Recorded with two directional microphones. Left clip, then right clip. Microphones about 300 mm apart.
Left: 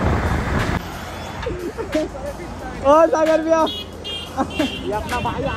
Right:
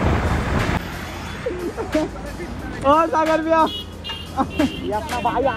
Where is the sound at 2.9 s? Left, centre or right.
Centre.